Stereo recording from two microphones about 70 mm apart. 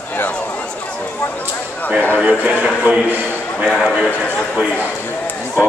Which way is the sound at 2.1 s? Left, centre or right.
Right.